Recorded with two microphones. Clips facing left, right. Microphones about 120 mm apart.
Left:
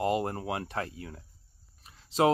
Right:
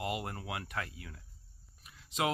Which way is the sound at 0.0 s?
35° left (ahead or behind).